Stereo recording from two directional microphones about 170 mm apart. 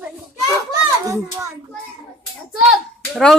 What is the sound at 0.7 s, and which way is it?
Speech, 20° right (ahead or behind).